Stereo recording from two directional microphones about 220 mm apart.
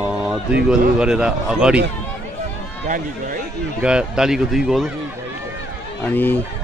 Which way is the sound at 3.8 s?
5° right (ahead or behind).